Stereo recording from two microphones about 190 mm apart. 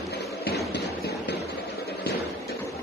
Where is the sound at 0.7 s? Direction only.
60° left (ahead or behind).